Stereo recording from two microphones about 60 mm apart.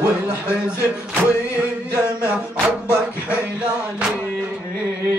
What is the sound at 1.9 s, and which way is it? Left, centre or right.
Mantra, right.